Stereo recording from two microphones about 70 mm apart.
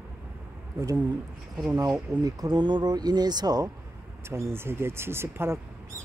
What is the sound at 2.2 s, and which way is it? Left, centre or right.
Speech, right.